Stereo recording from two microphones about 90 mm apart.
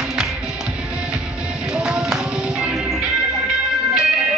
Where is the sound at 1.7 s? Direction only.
10° right (ahead or behind).